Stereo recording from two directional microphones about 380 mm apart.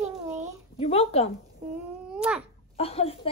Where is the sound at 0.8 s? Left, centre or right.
Centre.